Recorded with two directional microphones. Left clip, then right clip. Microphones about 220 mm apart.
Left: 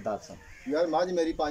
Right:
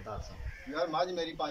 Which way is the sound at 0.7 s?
30° left (ahead or behind).